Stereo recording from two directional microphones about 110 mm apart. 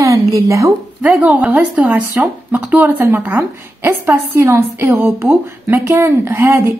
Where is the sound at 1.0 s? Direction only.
5° right (ahead or behind).